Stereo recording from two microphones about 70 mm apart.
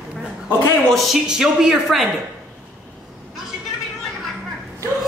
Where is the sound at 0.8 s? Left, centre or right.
Centre.